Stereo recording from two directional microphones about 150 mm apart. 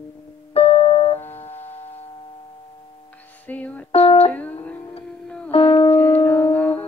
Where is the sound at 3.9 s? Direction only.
40° left (ahead or behind).